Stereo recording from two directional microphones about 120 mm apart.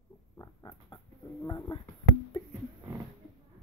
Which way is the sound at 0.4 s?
35° left (ahead or behind).